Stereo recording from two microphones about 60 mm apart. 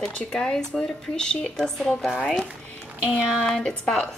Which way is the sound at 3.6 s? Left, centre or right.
Centre.